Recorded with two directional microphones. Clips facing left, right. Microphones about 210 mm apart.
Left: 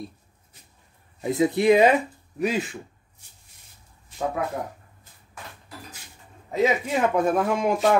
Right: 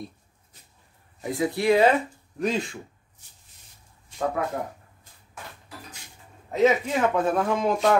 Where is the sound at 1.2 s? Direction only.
20° left (ahead or behind); by 2.8 s 5° left (ahead or behind).